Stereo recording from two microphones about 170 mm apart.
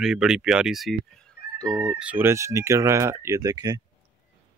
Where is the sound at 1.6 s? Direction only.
20° right (ahead or behind).